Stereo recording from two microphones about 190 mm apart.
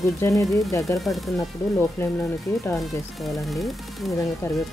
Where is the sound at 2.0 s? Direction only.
15° left (ahead or behind).